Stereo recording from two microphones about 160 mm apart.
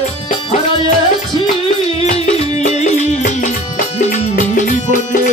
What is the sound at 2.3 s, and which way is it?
Music, 45° left (ahead or behind).